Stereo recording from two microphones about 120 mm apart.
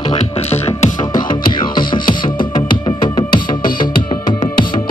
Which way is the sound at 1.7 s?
40° left (ahead or behind).